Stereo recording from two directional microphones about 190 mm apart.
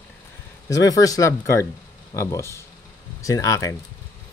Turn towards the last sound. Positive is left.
turn(degrees=15)  # may be behind; listen again after turning